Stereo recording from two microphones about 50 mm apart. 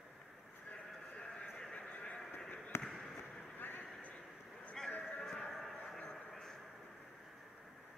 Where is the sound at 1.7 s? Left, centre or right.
Left.